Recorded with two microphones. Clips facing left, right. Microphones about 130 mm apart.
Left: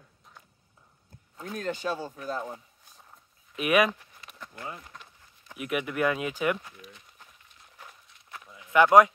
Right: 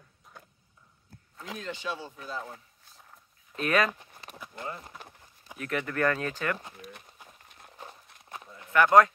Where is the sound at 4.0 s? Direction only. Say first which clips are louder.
Right 3 dB; 30° right (ahead or behind).